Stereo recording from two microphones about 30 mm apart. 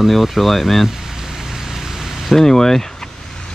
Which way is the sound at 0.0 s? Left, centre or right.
Centre.